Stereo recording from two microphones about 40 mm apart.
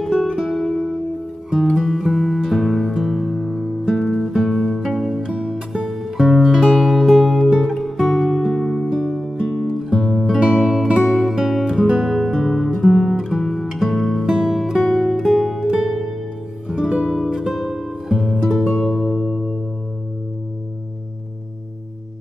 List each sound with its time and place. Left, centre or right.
0.0 s music: centre
9.8 s music: centre
11.6 s music: centre
14.2 s music: centre
14.5 s music: centre